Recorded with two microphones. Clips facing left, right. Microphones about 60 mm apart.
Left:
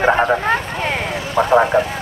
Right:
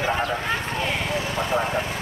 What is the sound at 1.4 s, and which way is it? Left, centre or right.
Speech, left.